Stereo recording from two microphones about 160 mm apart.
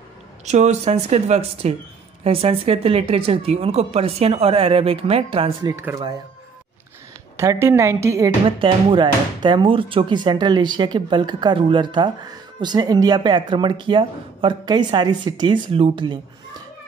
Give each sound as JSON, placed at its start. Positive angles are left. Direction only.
{"t": 0.5, "sound": "speech", "side_deg": -45}
{"t": 5.8, "sound": "a woman's voice", "side_deg": -15}
{"t": 7.3, "sound": "a woman's voice", "side_deg": -15}
{"t": 8.5, "sound": "speech", "side_deg": -30}